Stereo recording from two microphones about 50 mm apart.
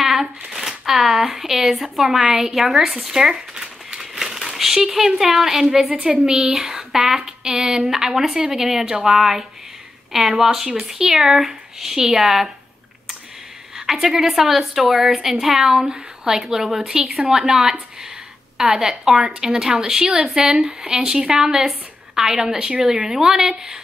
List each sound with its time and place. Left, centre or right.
0.0 s speech: centre
5.9 s a woman's voice: centre
6.5 s a woman's voice: centre
13.7 s a woman's voice: centre